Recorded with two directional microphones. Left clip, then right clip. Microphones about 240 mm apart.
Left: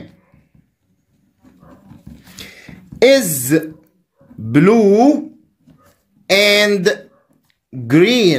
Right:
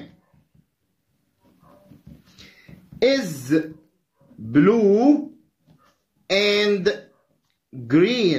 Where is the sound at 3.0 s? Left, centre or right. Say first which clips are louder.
Left 9 dB; left.